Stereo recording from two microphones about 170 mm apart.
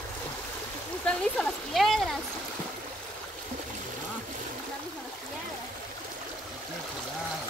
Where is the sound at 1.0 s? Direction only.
5° left (ahead or behind).